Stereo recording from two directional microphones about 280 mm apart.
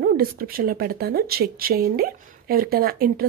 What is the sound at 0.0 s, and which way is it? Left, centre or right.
Speech, right.